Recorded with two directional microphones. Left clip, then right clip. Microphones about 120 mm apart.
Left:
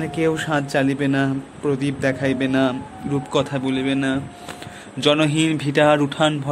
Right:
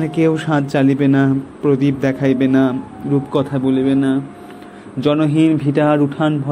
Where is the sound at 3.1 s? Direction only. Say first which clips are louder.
Right 3 dB; 30° left (ahead or behind).